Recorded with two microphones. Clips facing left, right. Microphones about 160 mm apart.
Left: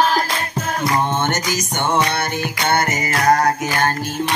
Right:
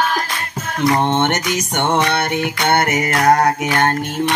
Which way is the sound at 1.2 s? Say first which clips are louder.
Right 3 dB; 60° right (ahead or behind).